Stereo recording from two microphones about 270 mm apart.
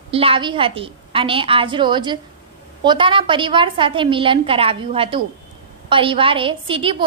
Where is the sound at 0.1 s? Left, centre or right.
Right.